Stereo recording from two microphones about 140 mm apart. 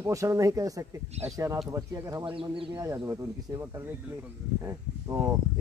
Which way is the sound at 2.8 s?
20° right (ahead or behind).